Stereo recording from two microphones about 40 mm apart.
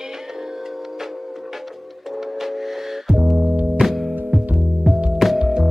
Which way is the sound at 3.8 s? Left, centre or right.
Centre.